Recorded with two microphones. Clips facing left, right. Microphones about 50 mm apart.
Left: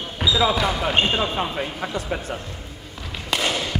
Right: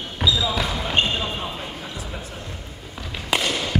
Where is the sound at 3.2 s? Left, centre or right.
Centre.